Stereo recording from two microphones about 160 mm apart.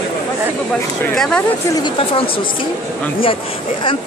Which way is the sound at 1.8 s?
30° left (ahead or behind).